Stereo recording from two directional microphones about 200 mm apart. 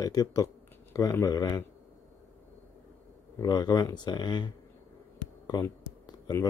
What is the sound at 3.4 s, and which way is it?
Speech, 20° left (ahead or behind).